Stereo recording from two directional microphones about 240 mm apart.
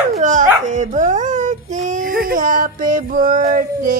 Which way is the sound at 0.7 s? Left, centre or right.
Right.